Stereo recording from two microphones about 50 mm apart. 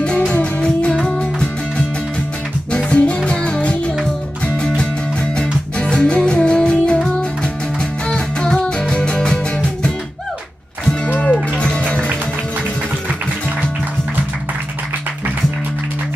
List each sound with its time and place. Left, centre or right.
0.0 s music: left
5.3 s music: centre
8.1 s music: centre
11.1 s music: left